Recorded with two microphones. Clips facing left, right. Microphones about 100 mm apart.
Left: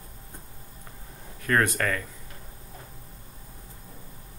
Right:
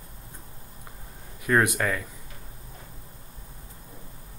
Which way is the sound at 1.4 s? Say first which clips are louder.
Right 1 dB; 15° right (ahead or behind).